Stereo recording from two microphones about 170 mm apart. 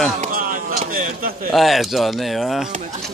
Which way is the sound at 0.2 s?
55° right (ahead or behind).